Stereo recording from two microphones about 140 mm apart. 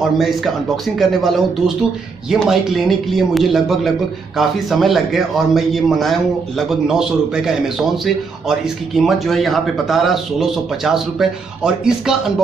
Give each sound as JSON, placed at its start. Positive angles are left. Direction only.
{"t": 0.2, "sound": "a man's voice", "side_deg": 0}